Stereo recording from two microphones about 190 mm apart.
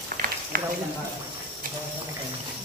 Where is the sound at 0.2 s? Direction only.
50° right (ahead or behind).